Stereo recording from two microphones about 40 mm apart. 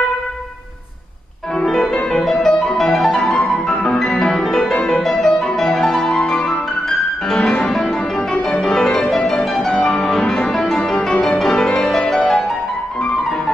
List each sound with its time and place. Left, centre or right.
1.8 s music: left
2.3 s music: centre
4.7 s music: left
5.0 s music: centre